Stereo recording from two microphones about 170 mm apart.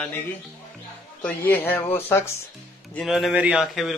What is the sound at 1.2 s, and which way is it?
Speech, 10° left (ahead or behind).